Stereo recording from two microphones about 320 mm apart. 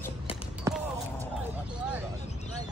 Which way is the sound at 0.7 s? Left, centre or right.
Centre.